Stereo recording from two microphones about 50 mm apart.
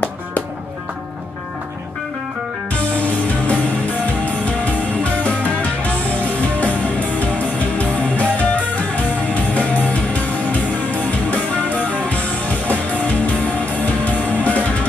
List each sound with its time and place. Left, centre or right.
3.0 s music: left